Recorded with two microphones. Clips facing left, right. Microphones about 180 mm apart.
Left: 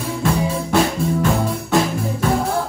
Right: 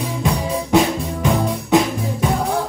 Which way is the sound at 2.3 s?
Centre (ahead or behind).